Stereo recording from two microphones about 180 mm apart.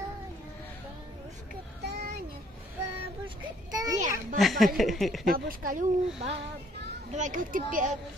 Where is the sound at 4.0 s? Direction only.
45° right (ahead or behind).